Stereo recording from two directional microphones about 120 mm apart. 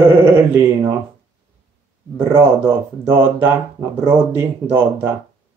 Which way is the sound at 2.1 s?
20° right (ahead or behind).